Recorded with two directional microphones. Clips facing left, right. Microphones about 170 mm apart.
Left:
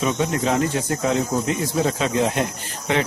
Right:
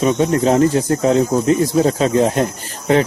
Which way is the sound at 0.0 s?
35° right (ahead or behind).